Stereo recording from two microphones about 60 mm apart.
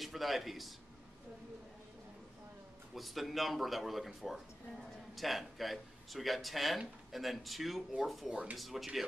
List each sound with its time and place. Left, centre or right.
0.0 s speech: centre
2.9 s speech: centre
8.3 s speech: centre
8.5 s speech: centre